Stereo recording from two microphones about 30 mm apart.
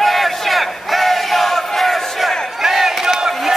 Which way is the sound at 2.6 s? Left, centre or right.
Centre.